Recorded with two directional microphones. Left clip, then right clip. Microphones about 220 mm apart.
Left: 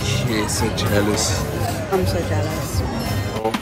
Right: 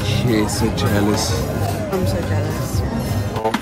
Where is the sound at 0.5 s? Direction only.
15° right (ahead or behind).